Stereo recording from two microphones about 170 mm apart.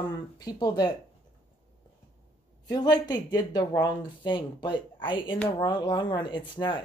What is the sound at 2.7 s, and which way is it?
Speech, 25° left (ahead or behind).